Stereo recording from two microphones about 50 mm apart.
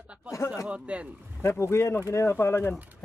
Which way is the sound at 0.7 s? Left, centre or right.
Right.